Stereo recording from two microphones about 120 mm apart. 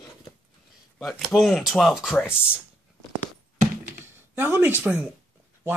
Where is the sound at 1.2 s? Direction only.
Centre (ahead or behind).